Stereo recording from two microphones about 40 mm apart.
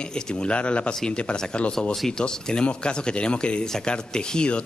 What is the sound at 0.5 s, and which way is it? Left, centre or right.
Speech, left.